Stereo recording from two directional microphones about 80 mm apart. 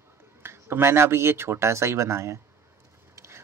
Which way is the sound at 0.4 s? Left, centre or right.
Right.